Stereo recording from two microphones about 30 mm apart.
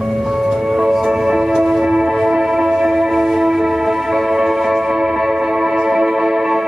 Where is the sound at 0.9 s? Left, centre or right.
Centre.